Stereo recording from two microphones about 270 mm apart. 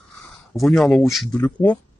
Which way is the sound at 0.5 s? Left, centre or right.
Centre.